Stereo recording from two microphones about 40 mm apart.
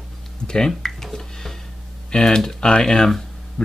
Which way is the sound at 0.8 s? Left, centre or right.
Centre.